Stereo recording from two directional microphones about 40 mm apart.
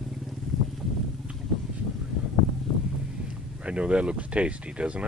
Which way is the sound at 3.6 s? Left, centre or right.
Right.